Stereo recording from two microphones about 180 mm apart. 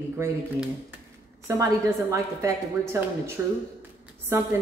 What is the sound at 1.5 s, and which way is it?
Speech, 15° right (ahead or behind).